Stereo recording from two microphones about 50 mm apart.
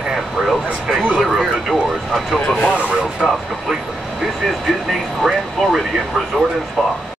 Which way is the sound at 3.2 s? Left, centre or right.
Centre.